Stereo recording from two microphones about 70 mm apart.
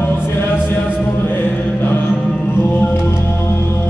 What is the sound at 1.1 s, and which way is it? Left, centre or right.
Mantra, left.